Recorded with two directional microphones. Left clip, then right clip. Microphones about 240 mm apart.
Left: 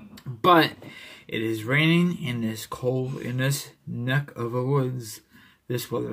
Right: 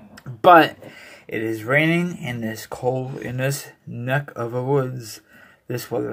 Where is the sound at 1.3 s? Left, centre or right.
Centre.